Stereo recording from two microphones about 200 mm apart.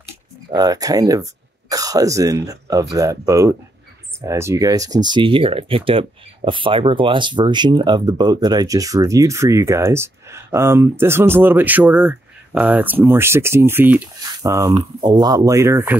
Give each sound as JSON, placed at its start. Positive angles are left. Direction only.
{"t": 0.5, "sound": "speech", "side_deg": -20}